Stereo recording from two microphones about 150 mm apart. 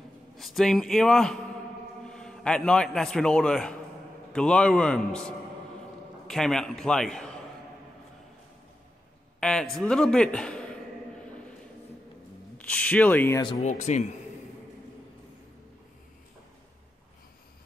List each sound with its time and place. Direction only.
0.4 s a man's voice: centre (ahead or behind)
9.4 s a man's voice: 5° left (ahead or behind)
12.5 s speech: 10° left (ahead or behind)
13.6 s speech: 50° left (ahead or behind)